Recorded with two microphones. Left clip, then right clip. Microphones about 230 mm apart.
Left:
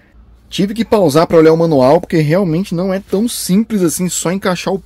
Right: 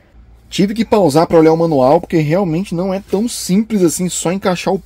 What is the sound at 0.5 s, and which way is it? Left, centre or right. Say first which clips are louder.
Speech: even; centre.